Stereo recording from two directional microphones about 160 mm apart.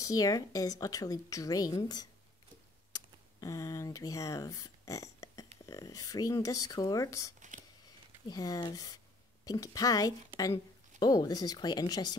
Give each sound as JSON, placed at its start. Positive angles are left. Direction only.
{"t": 0.0, "sound": "speech", "side_deg": 20}
{"t": 2.9, "sound": "computer keyboard", "side_deg": 20}
{"t": 5.7, "sound": "a woman's voice", "side_deg": 20}